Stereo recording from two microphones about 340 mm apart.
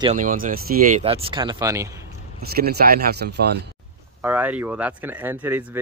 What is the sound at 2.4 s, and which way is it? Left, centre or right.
Speech, right.